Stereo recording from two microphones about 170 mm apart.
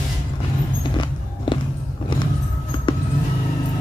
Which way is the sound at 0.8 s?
25° left (ahead or behind).